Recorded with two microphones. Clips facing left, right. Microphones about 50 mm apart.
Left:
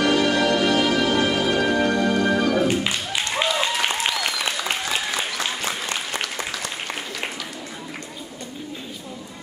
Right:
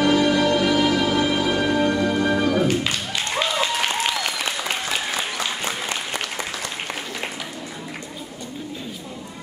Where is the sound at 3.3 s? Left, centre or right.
Centre.